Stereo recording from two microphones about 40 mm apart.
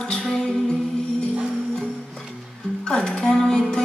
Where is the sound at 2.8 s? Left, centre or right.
Centre.